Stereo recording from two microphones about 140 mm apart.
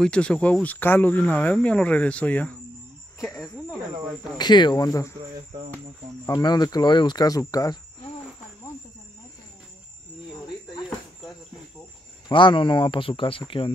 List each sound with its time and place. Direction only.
0.0 s speech: 5° left (ahead or behind)
4.4 s speech: 30° left (ahead or behind)
6.2 s speech: 30° left (ahead or behind)
12.3 s speech: 35° left (ahead or behind)